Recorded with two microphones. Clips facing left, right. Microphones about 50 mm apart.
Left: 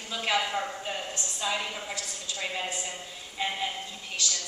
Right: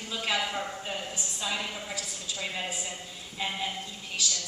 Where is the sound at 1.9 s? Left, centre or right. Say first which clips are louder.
Even; centre.